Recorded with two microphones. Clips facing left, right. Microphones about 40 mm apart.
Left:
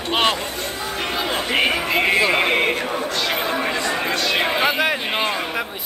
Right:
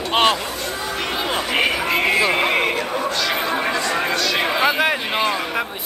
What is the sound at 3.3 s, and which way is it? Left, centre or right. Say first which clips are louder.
Chatter: right 1 dB; right.